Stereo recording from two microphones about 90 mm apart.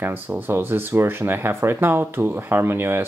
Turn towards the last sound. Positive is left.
turn(degrees=-25)  # may be behind; listen again after turning